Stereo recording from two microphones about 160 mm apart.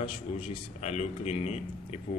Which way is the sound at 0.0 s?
40° left (ahead or behind).